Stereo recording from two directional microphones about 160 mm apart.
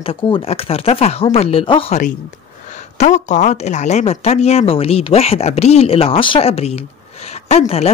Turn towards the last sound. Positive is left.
turn(degrees=40)  # may be behind; listen again after turning